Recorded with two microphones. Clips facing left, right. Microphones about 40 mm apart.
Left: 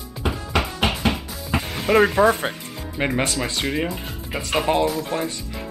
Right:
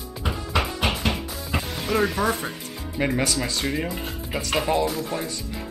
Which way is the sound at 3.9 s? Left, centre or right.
Centre.